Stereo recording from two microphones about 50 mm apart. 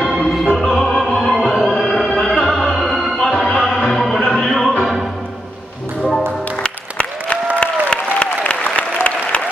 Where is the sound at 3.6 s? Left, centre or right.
Centre.